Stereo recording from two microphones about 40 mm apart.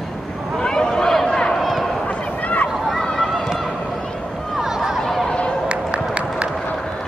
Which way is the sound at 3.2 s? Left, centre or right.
Centre.